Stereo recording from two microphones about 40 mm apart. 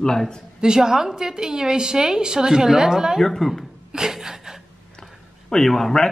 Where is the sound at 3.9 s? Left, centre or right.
Centre.